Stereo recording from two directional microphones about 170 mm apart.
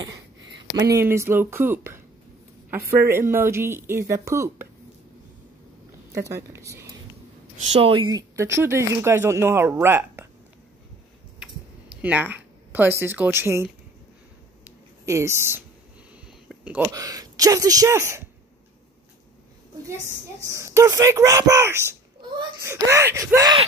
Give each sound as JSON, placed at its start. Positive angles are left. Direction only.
{"t": 0.8, "sound": "speech", "side_deg": -15}
{"t": 6.1, "sound": "speech", "side_deg": -15}
{"t": 7.8, "sound": "speech", "side_deg": -30}
{"t": 11.3, "sound": "a sound", "side_deg": -5}
{"t": 13.0, "sound": "speech", "side_deg": -15}
{"t": 15.0, "sound": "speech", "side_deg": -15}
{"t": 16.4, "sound": "a sound", "side_deg": -10}
{"t": 16.9, "sound": "speech", "side_deg": -20}
{"t": 20.4, "sound": "speech", "side_deg": -15}